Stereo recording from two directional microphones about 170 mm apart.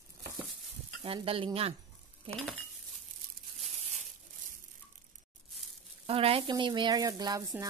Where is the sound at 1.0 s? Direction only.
35° right (ahead or behind).